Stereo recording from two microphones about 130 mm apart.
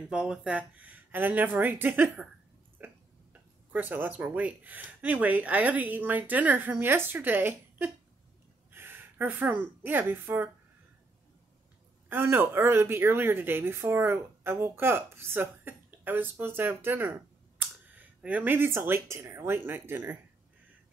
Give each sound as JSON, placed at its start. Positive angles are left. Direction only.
{"t": 0.0, "sound": "a woman's voice", "side_deg": -5}
{"t": 2.8, "sound": "a sound", "side_deg": -15}
{"t": 3.7, "sound": "a woman's voice", "side_deg": -15}
{"t": 12.1, "sound": "a woman's voice", "side_deg": -15}